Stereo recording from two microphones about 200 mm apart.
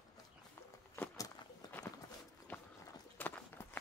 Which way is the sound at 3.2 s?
10° left (ahead or behind).